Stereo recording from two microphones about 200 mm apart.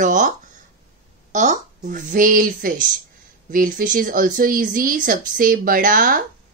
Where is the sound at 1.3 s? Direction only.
40° right (ahead or behind).